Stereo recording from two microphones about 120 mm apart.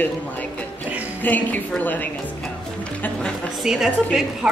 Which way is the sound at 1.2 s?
15° left (ahead or behind).